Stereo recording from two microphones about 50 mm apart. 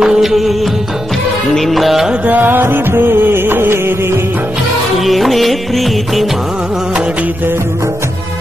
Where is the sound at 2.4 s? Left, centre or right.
Right.